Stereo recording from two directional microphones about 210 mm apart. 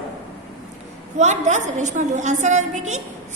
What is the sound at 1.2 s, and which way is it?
A woman's voice, 35° right (ahead or behind).